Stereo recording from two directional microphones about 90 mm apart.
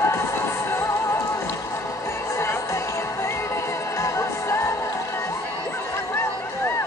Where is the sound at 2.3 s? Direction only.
30° left (ahead or behind).